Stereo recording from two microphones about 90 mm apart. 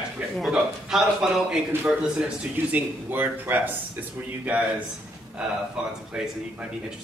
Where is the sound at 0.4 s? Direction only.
5° right (ahead or behind).